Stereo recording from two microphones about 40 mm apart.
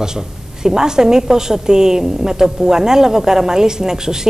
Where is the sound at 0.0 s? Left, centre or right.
Centre.